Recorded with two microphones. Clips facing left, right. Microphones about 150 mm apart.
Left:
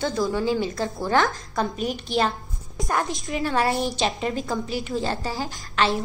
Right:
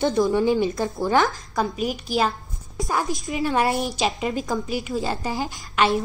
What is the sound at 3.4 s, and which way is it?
Speech, 15° right (ahead or behind).